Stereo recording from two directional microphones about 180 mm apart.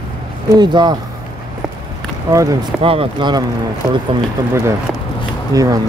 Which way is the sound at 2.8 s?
30° right (ahead or behind).